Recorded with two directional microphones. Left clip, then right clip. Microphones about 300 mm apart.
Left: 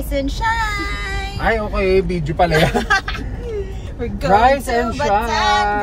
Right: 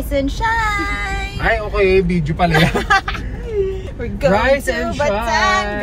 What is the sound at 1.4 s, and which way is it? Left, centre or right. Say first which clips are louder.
Speech: right 2 dB; centre.